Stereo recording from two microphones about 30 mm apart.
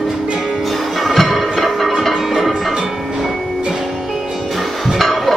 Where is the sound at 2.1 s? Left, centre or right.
Centre.